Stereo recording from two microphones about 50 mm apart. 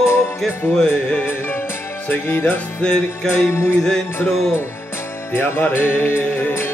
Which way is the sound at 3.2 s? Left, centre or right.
Left.